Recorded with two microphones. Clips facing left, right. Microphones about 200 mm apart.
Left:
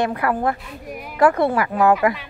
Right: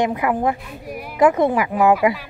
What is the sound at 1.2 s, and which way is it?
Speech, 20° right (ahead or behind).